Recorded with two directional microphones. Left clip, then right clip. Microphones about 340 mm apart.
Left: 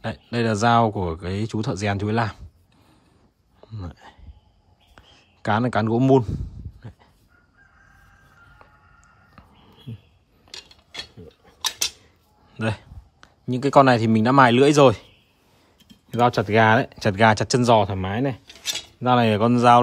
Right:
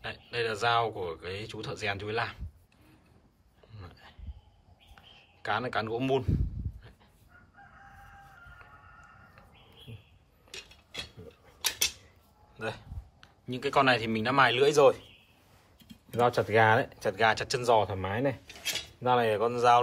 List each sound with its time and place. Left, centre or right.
0.0 s speech: centre
3.6 s a sound: centre
8.6 s chicken: centre
10.5 s a sound: centre
12.5 s speech: left
16.2 s speech: left
18.5 s filing: centre